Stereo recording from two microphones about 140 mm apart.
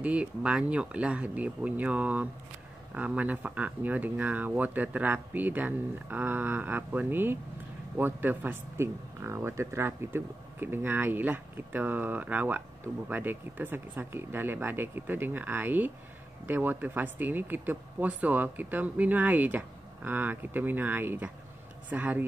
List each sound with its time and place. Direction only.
0.0 s speech: 10° right (ahead or behind)